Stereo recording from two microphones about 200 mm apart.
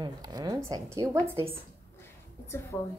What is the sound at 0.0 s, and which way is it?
Speech, 20° right (ahead or behind).